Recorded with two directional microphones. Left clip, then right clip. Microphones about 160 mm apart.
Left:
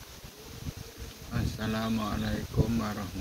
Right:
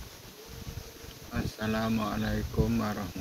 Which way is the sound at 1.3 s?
30° right (ahead or behind).